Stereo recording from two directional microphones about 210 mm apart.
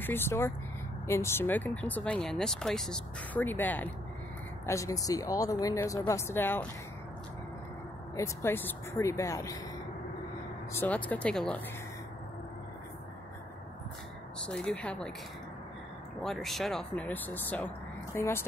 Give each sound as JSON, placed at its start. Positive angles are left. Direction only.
{"t": 0.0, "sound": "speech", "side_deg": 10}
{"t": 8.2, "sound": "speech", "side_deg": 10}
{"t": 11.1, "sound": "speech", "side_deg": 5}
{"t": 14.4, "sound": "speech", "side_deg": 5}
{"t": 16.2, "sound": "speech", "side_deg": 0}